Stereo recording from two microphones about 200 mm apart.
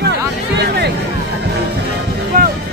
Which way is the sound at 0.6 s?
55° right (ahead or behind).